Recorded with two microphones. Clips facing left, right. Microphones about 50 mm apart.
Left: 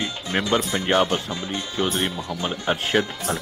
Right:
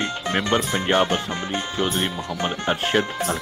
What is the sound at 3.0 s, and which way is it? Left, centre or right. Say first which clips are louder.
Speech: right 2 dB; right.